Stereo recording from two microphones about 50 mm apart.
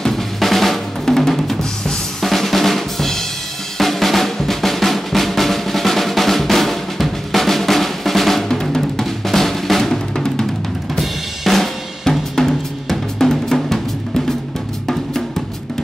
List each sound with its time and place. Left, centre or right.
0.0 s drum: centre
11.0 s drum kit: centre